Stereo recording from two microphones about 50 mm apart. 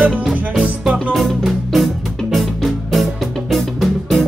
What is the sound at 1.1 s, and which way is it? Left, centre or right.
Music, centre.